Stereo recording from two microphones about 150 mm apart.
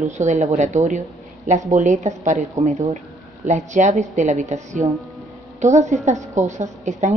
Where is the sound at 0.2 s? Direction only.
55° right (ahead or behind).